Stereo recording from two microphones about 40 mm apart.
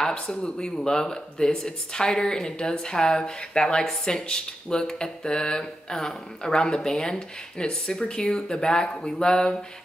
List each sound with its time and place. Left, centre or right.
0.0 s speech: left